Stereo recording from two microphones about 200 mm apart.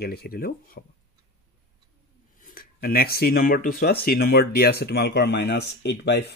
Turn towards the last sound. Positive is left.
turn(degrees=55)  # may be behind; listen again after turning